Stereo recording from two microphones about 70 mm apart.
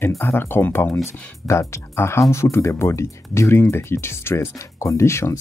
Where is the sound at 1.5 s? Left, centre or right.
Left.